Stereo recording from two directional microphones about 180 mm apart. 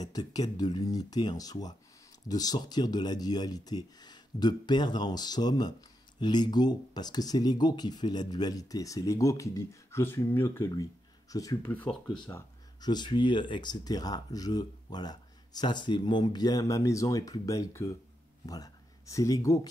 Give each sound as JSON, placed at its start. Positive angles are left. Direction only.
{"t": 0.1, "sound": "speech", "side_deg": 20}
{"t": 11.7, "sound": "speech", "side_deg": 5}
{"t": 12.3, "sound": "speech", "side_deg": 20}